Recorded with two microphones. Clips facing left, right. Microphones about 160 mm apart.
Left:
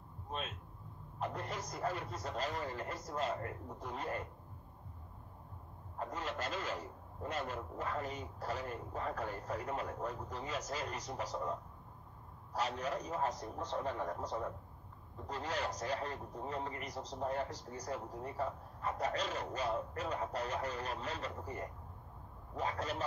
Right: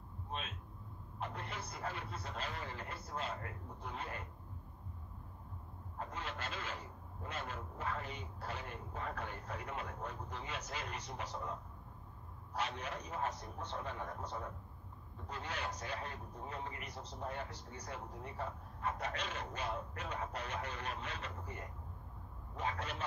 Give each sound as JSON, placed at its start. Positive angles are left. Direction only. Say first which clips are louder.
{"t": 1.2, "sound": "speech", "louder": "left 4 dB", "side_deg": 40}
{"t": 5.9, "sound": "speech", "louder": "left 4 dB", "side_deg": 40}
{"t": 12.5, "sound": "speech", "louder": "left 4 dB", "side_deg": 40}